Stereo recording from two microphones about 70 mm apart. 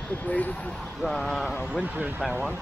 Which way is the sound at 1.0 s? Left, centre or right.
Centre.